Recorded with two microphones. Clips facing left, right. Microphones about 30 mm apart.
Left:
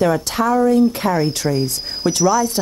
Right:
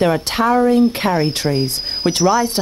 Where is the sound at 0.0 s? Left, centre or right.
Right.